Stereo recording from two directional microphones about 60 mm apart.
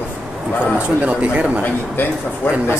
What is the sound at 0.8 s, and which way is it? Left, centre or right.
Speech, right.